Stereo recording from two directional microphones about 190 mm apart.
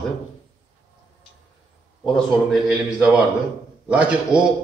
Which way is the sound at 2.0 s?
Centre (ahead or behind).